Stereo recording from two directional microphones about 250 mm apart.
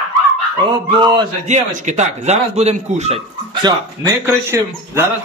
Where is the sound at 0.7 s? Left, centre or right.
Centre.